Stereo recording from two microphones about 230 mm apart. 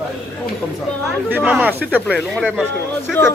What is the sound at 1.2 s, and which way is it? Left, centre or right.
Speech, centre.